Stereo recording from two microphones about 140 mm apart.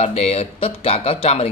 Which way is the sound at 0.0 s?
50° left (ahead or behind).